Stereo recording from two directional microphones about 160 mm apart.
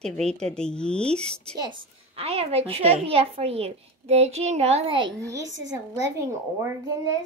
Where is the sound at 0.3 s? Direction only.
5° left (ahead or behind).